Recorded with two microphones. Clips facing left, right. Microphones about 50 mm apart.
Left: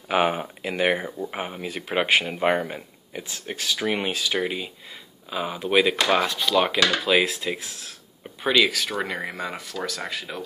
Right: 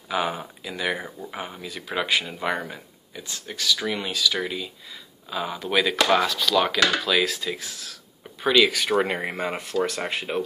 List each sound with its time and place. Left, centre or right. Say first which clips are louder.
0.1 s speech: left 4 dB; left
1.1 s speech: left 4 dB; left
3.5 s speech: even; left
5.3 s speech: left 2 dB; centre
8.4 s speech: right 1 dB; centre
8.7 s speech: right 5 dB; centre
9.0 s speech: right 3 dB; right